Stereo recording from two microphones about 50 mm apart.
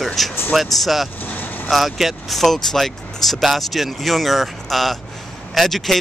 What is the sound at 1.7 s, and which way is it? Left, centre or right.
Speech, centre.